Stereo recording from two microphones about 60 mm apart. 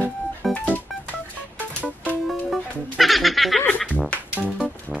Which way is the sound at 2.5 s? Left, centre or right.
Centre.